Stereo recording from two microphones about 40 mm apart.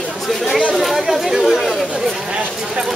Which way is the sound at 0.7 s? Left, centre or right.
Centre.